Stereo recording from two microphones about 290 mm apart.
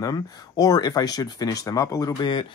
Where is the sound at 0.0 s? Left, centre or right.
Centre.